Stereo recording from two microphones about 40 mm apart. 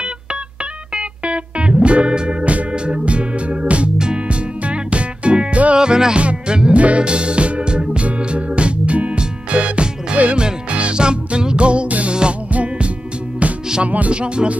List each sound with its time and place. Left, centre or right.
0.9 s music: right
5.8 s music: centre; by 14.1 s right
14.1 s music: right